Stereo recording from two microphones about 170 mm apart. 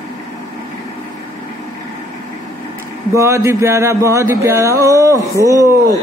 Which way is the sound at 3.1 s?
15° right (ahead or behind).